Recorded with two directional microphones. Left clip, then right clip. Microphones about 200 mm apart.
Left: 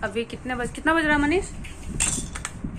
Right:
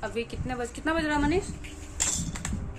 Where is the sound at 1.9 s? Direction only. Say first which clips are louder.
Left 3 dB; 20° right (ahead or behind).